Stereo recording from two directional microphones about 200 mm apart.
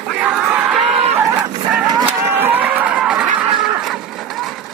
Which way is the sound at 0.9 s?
30° right (ahead or behind).